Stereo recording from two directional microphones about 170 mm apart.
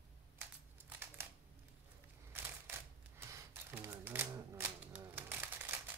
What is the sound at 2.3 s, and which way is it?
Typewriter, 15° right (ahead or behind).